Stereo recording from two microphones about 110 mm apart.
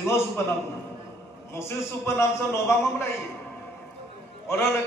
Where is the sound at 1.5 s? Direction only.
25° left (ahead or behind).